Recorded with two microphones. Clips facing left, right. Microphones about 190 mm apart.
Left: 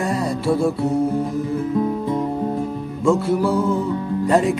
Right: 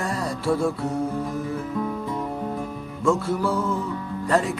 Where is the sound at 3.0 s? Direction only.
10° left (ahead or behind).